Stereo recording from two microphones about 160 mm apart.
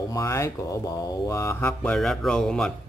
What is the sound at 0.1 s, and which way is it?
Speech, 20° left (ahead or behind).